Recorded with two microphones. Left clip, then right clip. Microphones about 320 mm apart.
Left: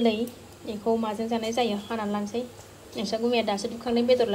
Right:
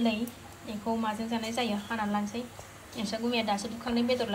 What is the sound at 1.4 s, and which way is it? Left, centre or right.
Speech, centre.